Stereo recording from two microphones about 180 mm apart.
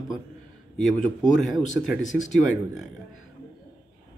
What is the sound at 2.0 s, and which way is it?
Speech, 45° left (ahead or behind).